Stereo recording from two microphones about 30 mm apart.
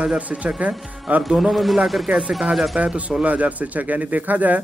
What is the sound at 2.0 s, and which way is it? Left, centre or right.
Speech, right.